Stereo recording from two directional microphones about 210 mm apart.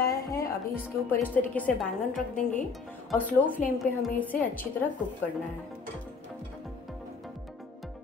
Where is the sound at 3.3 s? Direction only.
10° left (ahead or behind).